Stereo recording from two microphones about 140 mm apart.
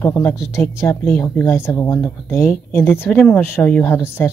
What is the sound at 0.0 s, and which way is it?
Speech, 20° left (ahead or behind).